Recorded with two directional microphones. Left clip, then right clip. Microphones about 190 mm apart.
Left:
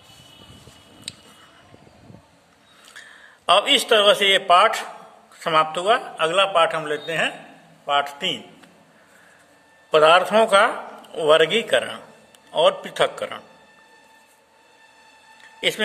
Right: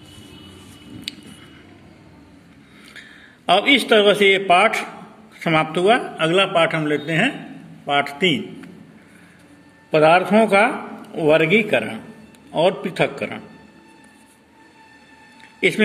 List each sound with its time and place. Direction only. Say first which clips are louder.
2.9 s a man's voice: right 1 dB; 10° left (ahead or behind)
9.8 s a man's voice: even; 25° left (ahead or behind)